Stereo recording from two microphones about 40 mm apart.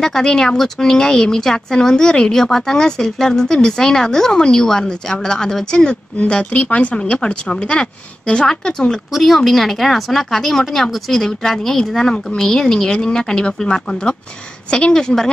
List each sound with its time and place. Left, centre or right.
0.0 s speech: centre
6.2 s speech: left
9.1 s a woman's voice: centre